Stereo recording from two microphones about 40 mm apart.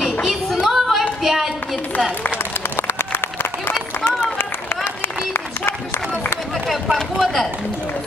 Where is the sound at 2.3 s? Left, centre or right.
Left.